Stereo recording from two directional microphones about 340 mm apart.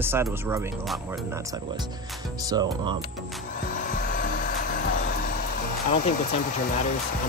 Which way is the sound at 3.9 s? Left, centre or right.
Left.